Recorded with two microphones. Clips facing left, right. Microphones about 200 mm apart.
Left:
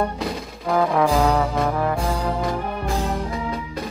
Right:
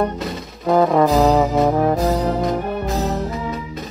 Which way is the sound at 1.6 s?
25° right (ahead or behind).